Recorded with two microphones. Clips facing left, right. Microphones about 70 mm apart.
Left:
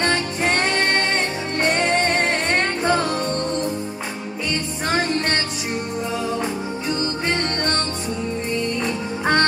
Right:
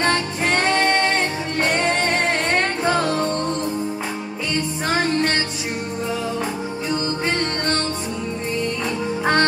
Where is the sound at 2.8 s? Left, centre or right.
Centre.